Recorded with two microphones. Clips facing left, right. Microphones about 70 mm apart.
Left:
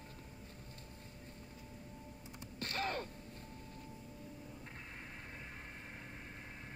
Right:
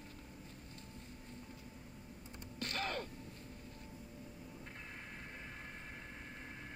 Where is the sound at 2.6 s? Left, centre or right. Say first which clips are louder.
Left 1 dB; left.